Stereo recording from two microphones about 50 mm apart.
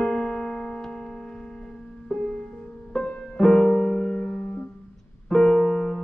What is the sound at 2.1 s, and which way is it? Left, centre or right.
Music, centre.